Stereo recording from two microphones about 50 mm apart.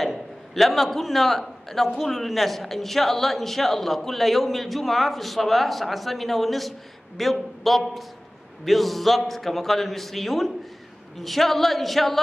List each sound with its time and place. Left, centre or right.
0.0 s a man's voice: centre